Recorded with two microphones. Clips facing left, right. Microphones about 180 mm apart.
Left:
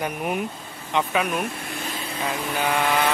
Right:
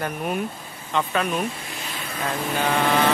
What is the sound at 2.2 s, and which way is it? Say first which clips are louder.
Speech: right 1 dB; 10° left (ahead or behind).